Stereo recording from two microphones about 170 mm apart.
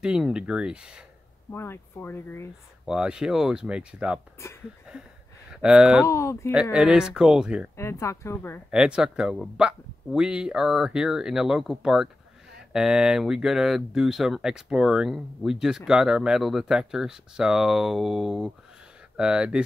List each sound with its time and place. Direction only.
0.0 s speech: 5° right (ahead or behind)
1.5 s speech: 15° left (ahead or behind)
2.8 s speech: 5° right (ahead or behind)
4.9 s a sound: 5° right (ahead or behind)
5.5 s speech: 5° right (ahead or behind)
6.0 s speech: 15° left (ahead or behind)
6.5 s speech: 5° right (ahead or behind)
7.7 s speech: 15° left (ahead or behind)
8.6 s speech: 5° right (ahead or behind)